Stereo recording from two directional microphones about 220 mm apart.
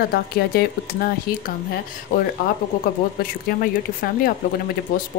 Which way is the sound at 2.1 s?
40° left (ahead or behind).